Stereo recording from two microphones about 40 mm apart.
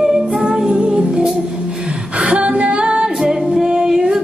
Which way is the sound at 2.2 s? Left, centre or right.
Right.